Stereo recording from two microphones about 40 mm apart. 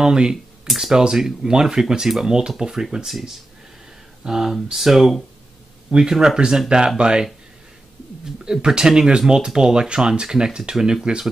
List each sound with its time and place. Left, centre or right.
0.0 s speech: centre
3.1 s speech: centre
5.9 s speech: centre
8.5 s speech: centre